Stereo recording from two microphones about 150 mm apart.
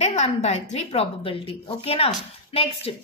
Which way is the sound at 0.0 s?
50° left (ahead or behind).